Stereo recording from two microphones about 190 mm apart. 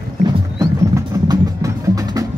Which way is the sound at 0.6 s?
20° right (ahead or behind).